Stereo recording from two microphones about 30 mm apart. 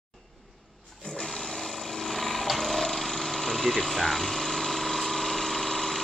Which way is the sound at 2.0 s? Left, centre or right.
Centre.